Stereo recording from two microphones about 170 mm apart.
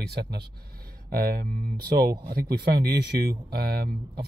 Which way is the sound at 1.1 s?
60° right (ahead or behind).